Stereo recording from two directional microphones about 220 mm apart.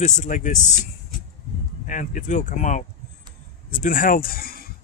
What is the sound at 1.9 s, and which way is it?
Speech, 35° left (ahead or behind).